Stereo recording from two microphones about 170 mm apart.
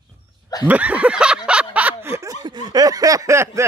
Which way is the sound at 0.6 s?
10° right (ahead or behind).